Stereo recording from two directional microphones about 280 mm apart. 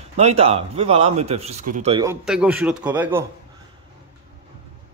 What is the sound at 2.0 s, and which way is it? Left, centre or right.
A man's voice, centre.